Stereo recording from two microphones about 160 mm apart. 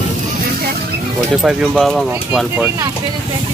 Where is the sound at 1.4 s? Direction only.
Centre (ahead or behind).